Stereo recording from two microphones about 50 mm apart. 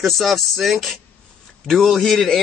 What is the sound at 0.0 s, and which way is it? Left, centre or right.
Music, centre.